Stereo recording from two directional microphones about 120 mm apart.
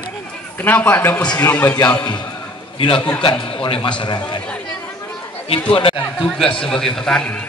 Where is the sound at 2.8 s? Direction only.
40° left (ahead or behind).